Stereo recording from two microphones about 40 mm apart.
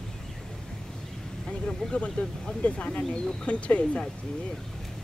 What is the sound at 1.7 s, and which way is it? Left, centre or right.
Speech, left.